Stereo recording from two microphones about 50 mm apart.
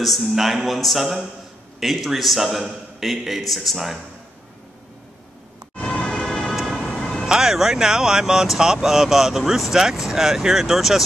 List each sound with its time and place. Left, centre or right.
0.0 s a man's voice: centre
5.8 s emergency vehicle: left
6.5 s ambulance: centre
7.0 s emergency vehicle: centre
7.2 s speech: centre